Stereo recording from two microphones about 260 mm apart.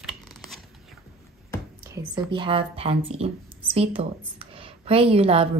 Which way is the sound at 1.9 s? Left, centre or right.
Centre.